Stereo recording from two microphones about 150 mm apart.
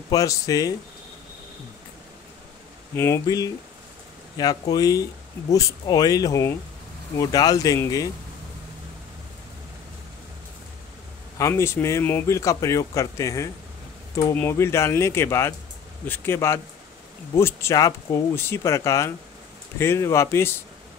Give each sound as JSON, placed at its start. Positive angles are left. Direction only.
{"t": 0.1, "sound": "speech", "side_deg": 20}
{"t": 2.9, "sound": "speech", "side_deg": 15}
{"t": 11.3, "sound": "speech", "side_deg": 20}